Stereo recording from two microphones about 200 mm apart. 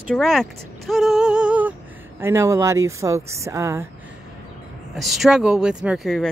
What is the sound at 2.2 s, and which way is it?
Speech, 10° right (ahead or behind).